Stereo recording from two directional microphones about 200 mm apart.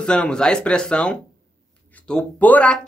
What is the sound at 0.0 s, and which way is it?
Speech, 5° left (ahead or behind).